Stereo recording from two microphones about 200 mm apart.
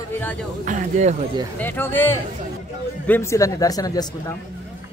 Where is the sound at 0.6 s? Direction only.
40° right (ahead or behind).